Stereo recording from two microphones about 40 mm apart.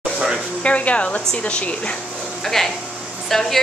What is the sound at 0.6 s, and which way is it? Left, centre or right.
Speech, left.